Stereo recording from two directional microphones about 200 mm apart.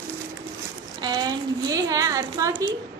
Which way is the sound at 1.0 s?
20° right (ahead or behind).